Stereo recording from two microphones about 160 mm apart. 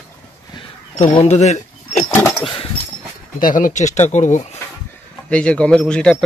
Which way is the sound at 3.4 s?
60° left (ahead or behind).